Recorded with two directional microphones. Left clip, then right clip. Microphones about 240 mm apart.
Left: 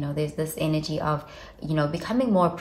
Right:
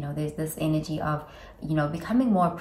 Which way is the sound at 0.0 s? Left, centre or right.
Left.